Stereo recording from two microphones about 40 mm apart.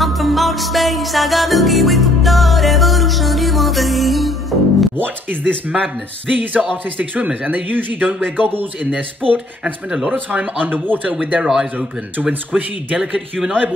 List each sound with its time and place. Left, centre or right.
0.0 s music: centre
4.9 s speech: right
10.6 s speech: right
11.1 s speech: right